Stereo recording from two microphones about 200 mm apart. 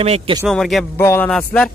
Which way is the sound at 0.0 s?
30° right (ahead or behind).